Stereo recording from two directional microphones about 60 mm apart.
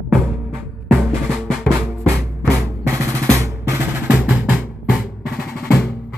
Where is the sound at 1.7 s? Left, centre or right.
Centre.